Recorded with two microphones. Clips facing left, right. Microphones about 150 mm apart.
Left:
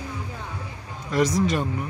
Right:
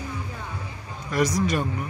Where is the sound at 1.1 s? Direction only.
25° left (ahead or behind).